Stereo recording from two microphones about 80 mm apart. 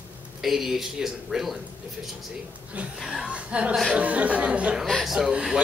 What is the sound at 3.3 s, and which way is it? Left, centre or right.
Speech, centre.